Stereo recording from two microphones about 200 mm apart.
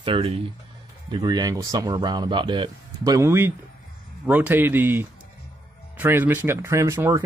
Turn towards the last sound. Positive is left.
turn(degrees=-15)  # may be behind; listen again after turning